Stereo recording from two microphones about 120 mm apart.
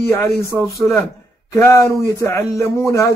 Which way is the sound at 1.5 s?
25° left (ahead or behind).